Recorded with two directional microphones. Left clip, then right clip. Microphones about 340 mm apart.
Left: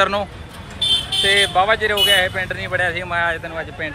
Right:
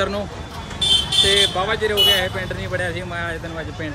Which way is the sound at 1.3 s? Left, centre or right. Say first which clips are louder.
Left 3 dB; centre.